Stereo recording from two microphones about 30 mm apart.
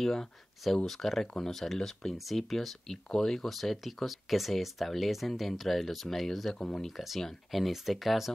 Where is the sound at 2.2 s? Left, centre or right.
Centre.